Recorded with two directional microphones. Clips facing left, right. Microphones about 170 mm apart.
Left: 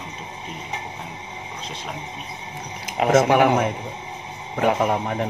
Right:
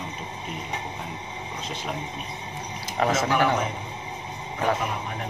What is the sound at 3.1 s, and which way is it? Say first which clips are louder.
Speech: left 9 dB; 60° left (ahead or behind).